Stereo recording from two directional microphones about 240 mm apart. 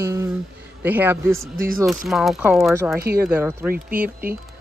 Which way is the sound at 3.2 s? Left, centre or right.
Centre.